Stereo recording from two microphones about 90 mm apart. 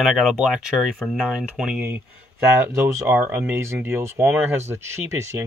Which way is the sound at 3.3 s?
25° right (ahead or behind).